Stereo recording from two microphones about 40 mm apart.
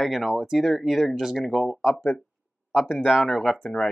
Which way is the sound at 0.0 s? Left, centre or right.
Centre.